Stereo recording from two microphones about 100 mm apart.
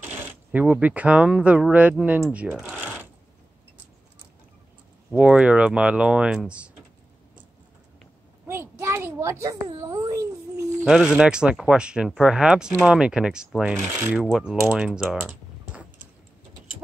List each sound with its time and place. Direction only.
0.0 s speech: 15° right (ahead or behind)
5.1 s speech: 10° right (ahead or behind)
8.5 s a sound: 25° right (ahead or behind)
10.9 s speech: 5° right (ahead or behind)
13.7 s speech: 25° right (ahead or behind)
14.2 s mechanisms: 5° right (ahead or behind)